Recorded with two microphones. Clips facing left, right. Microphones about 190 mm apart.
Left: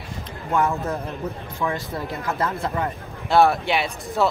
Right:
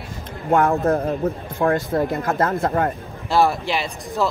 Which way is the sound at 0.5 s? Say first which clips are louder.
Right 6 dB; 55° right (ahead or behind).